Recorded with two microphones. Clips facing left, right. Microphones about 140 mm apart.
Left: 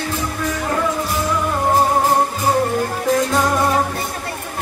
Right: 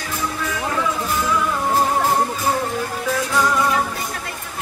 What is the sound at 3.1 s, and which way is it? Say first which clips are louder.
Music: left 2 dB; 45° left (ahead or behind).